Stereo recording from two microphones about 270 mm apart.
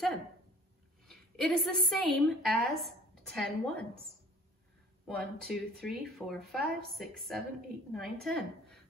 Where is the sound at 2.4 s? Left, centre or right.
Centre.